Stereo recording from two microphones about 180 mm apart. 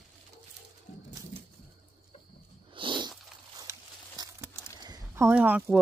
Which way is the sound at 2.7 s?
25° right (ahead or behind).